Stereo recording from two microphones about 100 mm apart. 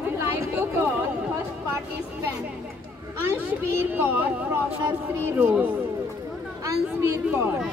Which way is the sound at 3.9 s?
20° right (ahead or behind).